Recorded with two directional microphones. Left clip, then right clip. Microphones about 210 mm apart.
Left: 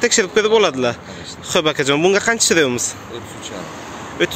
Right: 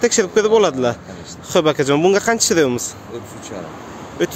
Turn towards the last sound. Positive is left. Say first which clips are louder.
# left 2 dB
turn(degrees=-15)  # may be behind; listen again after turning